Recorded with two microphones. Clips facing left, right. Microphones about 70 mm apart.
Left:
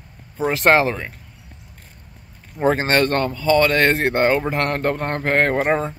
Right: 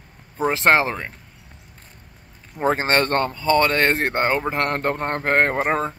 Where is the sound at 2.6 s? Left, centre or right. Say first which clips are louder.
Left 2 dB; right.